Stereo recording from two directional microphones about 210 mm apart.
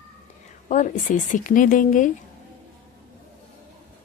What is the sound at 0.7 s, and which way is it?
A woman's voice, 35° left (ahead or behind).